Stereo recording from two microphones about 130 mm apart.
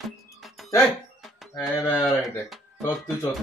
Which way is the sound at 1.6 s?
20° left (ahead or behind).